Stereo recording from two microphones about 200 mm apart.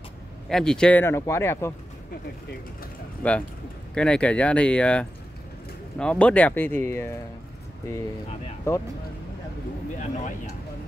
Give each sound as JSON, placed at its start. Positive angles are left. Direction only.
{"t": 0.5, "sound": "speech", "side_deg": 0}
{"t": 3.2, "sound": "speech", "side_deg": 5}
{"t": 9.9, "sound": "speech", "side_deg": 40}